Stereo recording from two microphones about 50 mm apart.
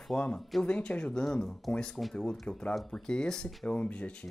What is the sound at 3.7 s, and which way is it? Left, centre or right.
Speech, left.